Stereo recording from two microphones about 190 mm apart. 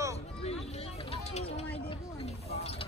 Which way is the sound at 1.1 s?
35° left (ahead or behind).